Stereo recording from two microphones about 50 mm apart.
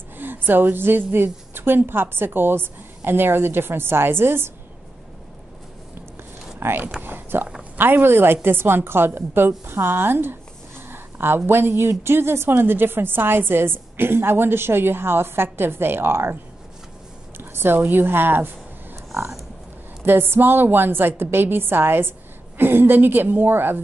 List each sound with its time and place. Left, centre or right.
0.2 s a woman's voice: right
6.6 s a woman's voice: right
7.0 s a sound: right
7.7 s a woman's voice: right
17.4 s a sound: right
17.8 s a woman's voice: right
20.0 s a woman's voice: right